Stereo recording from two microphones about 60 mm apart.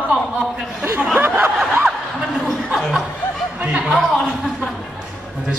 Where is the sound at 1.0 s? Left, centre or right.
Centre.